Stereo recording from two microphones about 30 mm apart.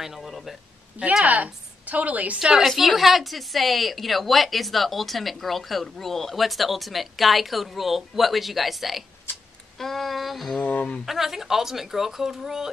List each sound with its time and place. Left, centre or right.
0.0 s a sound: centre
0.3 s a sound: centre
1.2 s a woman's voice: right
2.3 s a woman's voice: right
2.6 s a woman's voice: centre
10.6 s speech: left
11.1 s speech: centre